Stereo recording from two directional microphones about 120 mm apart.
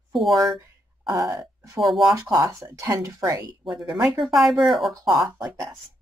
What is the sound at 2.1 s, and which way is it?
A woman's voice, 30° right (ahead or behind).